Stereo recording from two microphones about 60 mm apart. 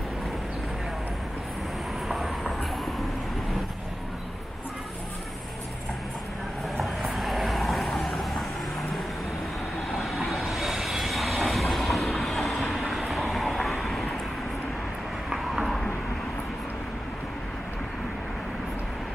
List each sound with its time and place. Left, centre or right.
2.0 s vehicle: centre
6.8 s vehicle: centre
9.9 s vehicle: centre
15.2 s a sound: centre